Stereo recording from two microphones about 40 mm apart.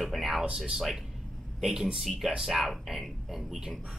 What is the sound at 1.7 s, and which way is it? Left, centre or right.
Speech, centre.